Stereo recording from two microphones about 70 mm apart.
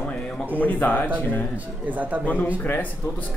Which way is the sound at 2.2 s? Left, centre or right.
Left.